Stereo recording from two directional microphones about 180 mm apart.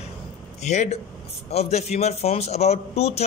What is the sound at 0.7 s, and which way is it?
A man's voice, 40° left (ahead or behind).